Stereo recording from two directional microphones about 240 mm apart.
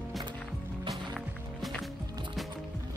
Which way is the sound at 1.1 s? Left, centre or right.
Centre.